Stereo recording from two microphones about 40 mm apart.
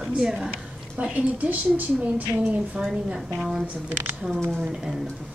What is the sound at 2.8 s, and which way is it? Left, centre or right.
Speech, centre.